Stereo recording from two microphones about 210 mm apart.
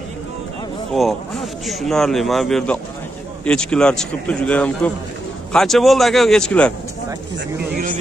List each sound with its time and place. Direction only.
0.9 s speech: centre (ahead or behind)
7.3 s speech: 45° right (ahead or behind)